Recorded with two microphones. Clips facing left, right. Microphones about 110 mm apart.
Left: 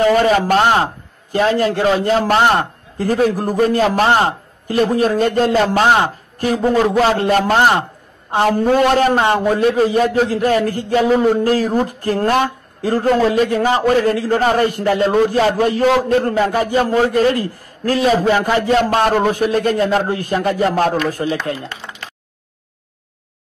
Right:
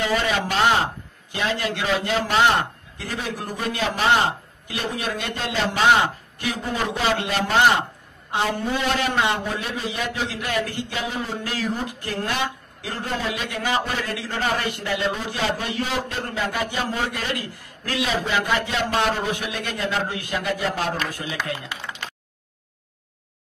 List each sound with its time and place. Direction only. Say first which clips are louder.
0.0 s a man's voice: left 10 dB; 45° left (ahead or behind)